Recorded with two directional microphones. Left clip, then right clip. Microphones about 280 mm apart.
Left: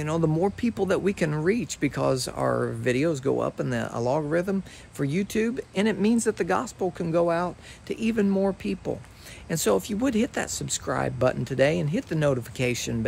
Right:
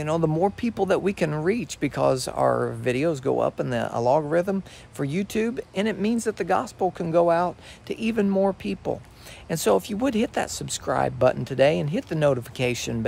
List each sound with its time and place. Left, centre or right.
0.0 s speech: centre